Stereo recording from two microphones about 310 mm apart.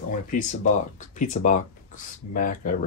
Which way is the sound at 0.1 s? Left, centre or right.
Left.